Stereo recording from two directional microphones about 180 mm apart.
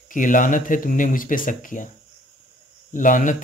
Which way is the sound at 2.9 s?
45° left (ahead or behind).